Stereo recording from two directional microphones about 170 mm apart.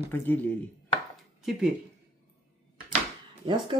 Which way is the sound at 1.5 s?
5° right (ahead or behind).